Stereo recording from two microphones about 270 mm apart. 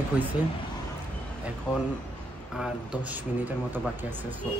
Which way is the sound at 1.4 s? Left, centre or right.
Centre.